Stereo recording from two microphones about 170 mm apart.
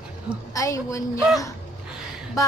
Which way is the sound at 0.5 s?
20° left (ahead or behind).